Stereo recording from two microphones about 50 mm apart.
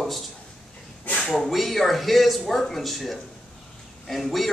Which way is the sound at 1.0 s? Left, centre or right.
Left.